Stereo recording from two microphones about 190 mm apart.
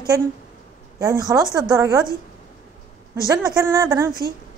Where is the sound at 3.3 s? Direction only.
20° right (ahead or behind).